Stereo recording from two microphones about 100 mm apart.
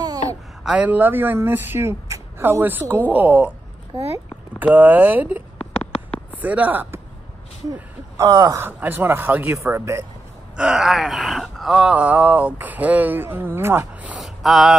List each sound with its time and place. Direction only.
0.7 s speech: 15° right (ahead or behind)
3.1 s gasp: 15° right (ahead or behind)
4.6 s gasp: 20° right (ahead or behind)
6.3 s speech: 15° right (ahead or behind)
8.2 s speech: 35° right (ahead or behind)
8.5 s speech: 20° right (ahead or behind)
10.5 s gasp: 5° right (ahead or behind)
14.1 s a sound: centre (ahead or behind)